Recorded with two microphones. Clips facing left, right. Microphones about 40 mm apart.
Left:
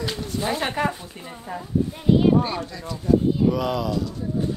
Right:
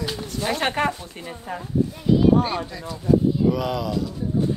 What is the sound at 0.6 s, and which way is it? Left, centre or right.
Speech, right.